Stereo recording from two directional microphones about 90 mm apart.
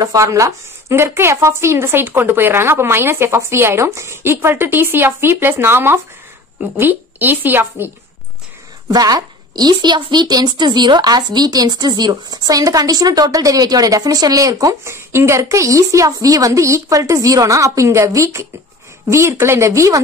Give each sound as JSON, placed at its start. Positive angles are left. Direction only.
{"t": 0.0, "sound": "a woman's voice", "side_deg": -40}
{"t": 8.9, "sound": "a woman's voice", "side_deg": -45}